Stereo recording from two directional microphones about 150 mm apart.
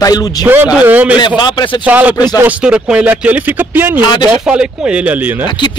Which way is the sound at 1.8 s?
10° right (ahead or behind).